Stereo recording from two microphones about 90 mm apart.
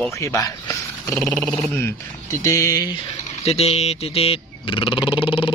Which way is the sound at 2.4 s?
35° left (ahead or behind).